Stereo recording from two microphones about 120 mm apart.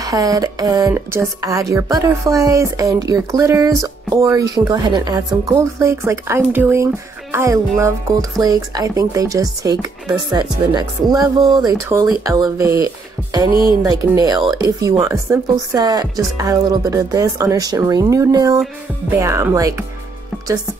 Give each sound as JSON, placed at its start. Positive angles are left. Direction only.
{"t": 0.0, "sound": "a woman's voice", "side_deg": -30}
{"t": 12.6, "sound": "music", "side_deg": -30}
{"t": 14.1, "sound": "a woman's voice", "side_deg": -35}